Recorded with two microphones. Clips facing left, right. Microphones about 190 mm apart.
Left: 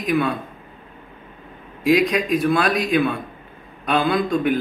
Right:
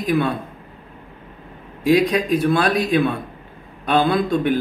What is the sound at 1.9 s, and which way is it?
A man's voice, 30° right (ahead or behind).